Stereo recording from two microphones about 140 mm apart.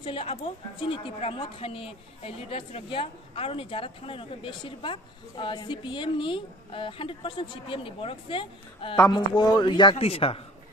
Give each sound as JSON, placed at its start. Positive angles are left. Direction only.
{"t": 0.0, "sound": "a woman's voice", "side_deg": 40}